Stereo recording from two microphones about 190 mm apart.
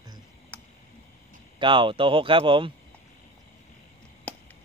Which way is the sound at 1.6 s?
25° right (ahead or behind).